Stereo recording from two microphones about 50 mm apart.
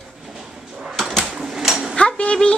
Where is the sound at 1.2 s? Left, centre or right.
Centre.